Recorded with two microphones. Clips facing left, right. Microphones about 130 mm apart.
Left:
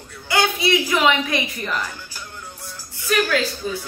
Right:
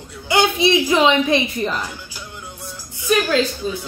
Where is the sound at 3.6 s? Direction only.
20° right (ahead or behind).